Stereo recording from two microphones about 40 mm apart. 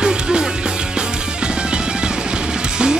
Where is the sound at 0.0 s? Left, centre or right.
Right.